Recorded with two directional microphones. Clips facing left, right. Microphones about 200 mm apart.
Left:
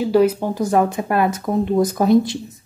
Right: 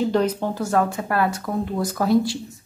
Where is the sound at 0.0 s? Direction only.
10° left (ahead or behind).